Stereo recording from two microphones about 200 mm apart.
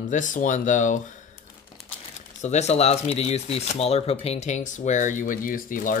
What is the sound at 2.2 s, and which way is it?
Speech, 35° left (ahead or behind).